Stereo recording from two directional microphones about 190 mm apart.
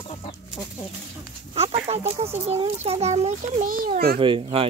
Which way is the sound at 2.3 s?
35° right (ahead or behind).